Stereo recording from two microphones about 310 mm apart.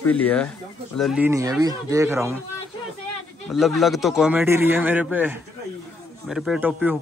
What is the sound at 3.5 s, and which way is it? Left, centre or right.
A man's voice, centre.